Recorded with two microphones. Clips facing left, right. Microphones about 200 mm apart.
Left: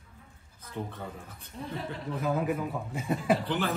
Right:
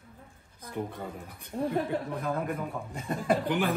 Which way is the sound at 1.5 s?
50° right (ahead or behind).